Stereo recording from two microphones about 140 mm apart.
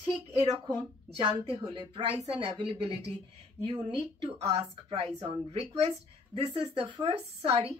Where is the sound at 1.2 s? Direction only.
40° right (ahead or behind).